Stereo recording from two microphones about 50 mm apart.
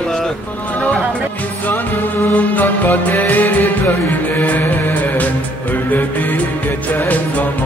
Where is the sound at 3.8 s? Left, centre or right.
Left.